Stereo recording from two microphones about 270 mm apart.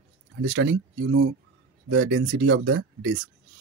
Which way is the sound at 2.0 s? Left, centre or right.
Right.